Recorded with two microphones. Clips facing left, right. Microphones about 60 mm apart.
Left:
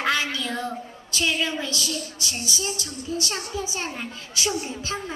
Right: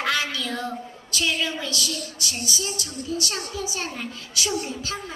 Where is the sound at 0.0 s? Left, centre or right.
Left.